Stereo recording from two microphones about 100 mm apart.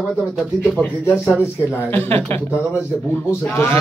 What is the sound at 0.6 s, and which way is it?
Speech, 15° left (ahead or behind).